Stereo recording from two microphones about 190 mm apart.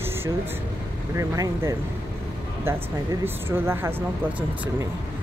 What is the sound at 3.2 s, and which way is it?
Speech, 10° right (ahead or behind).